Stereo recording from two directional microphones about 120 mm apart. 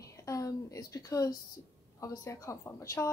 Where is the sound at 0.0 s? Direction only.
25° left (ahead or behind).